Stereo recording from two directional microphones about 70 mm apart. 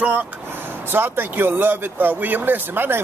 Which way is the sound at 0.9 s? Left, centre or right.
Right.